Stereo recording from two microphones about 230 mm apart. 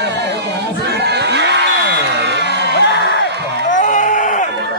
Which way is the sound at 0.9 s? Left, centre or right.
Right.